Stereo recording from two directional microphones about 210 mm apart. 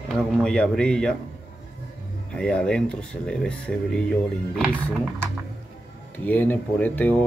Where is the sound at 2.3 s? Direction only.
5° left (ahead or behind).